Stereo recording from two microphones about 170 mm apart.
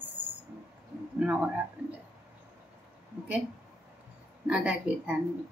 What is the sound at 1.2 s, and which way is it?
Speech, 5° right (ahead or behind).